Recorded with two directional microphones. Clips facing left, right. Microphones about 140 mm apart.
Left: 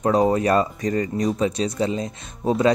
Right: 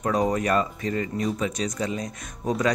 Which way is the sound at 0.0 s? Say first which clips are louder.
Left 5 dB; 30° left (ahead or behind).